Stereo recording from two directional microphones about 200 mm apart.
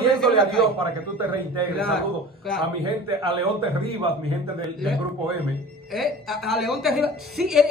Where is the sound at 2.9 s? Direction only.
25° right (ahead or behind).